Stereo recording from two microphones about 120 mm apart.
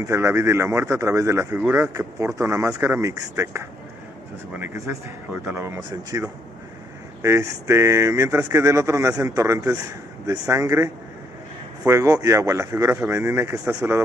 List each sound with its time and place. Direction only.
0.0 s speech: 25° right (ahead or behind)
7.2 s speech: 25° right (ahead or behind)